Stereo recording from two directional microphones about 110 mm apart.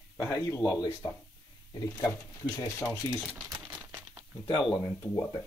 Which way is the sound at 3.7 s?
20° right (ahead or behind).